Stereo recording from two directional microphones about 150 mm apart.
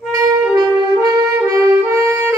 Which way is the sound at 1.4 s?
20° right (ahead or behind).